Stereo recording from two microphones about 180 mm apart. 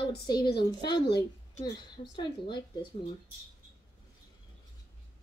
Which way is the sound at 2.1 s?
25° left (ahead or behind).